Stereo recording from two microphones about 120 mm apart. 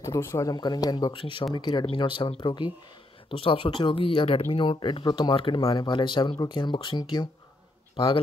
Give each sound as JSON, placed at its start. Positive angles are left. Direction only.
{"t": 0.0, "sound": "speech", "side_deg": 20}
{"t": 0.5, "sound": "speech", "side_deg": 35}
{"t": 1.1, "sound": "speech", "side_deg": 45}